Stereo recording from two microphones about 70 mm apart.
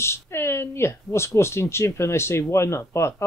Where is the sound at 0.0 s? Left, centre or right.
Left.